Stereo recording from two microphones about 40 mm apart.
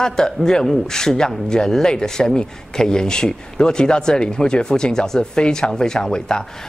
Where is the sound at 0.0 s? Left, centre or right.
Centre.